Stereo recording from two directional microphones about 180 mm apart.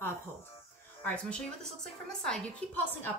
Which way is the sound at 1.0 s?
5° left (ahead or behind).